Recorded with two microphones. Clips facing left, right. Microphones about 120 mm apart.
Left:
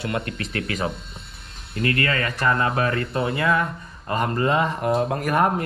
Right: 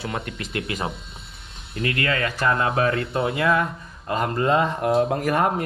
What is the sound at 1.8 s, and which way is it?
Speech, 40° left (ahead or behind).